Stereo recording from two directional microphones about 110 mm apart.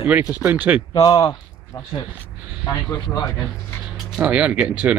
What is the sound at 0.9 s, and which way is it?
Speech, 40° left (ahead or behind).